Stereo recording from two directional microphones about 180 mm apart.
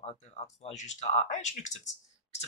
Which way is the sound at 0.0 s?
35° left (ahead or behind).